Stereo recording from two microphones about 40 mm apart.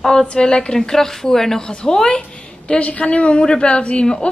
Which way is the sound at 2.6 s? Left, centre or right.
Left.